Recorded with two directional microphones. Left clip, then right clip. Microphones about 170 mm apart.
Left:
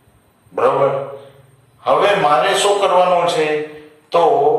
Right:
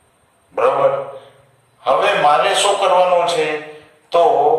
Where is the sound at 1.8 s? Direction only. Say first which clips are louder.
Even; 20° right (ahead or behind).